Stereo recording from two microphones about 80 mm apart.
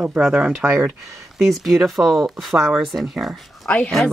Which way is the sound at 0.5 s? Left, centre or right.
Right.